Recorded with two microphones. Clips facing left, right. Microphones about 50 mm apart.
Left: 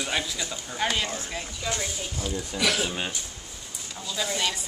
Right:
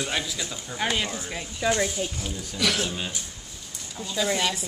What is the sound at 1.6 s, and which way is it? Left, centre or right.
Speech, right.